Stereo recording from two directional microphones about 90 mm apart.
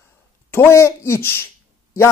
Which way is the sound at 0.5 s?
30° left (ahead or behind).